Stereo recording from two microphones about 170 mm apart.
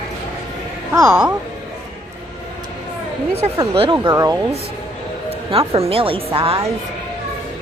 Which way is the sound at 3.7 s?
30° right (ahead or behind).